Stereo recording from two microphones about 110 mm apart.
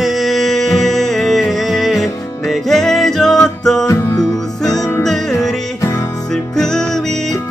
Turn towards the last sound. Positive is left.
turn(degrees=5)  # may be behind; listen again after turning